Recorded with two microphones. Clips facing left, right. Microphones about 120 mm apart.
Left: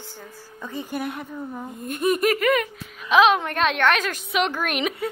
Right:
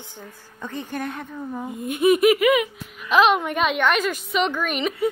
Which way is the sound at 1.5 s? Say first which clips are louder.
Right 3 dB; 5° right (ahead or behind).